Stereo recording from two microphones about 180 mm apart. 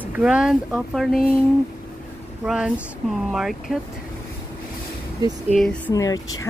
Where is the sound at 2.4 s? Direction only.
5° right (ahead or behind).